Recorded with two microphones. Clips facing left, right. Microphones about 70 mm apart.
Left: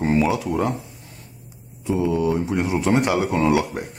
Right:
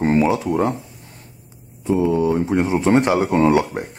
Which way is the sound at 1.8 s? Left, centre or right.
Right.